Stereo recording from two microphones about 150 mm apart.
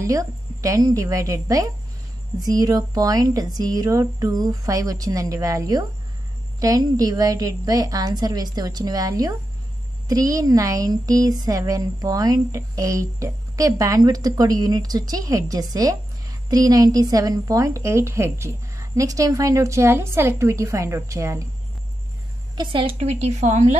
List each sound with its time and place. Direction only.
0.0 s speech: 20° right (ahead or behind)
22.6 s a woman's voice: 35° right (ahead or behind); by 23.8 s 50° right (ahead or behind)